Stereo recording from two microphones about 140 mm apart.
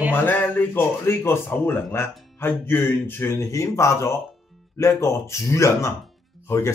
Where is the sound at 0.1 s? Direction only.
15° left (ahead or behind).